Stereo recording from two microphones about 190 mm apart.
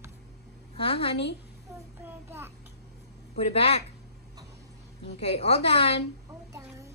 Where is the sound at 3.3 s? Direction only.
30° left (ahead or behind).